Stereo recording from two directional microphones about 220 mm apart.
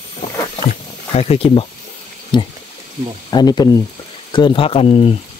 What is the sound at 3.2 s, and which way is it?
Speech, 20° left (ahead or behind).